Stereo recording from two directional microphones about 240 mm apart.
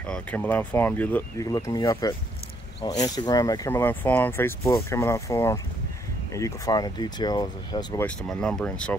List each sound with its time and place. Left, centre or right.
0.0 s speech: centre
8.2 s speech: centre